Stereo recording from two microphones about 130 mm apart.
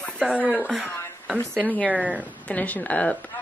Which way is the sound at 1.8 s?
10° right (ahead or behind).